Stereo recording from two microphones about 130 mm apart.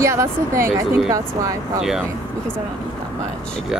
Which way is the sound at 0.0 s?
20° right (ahead or behind).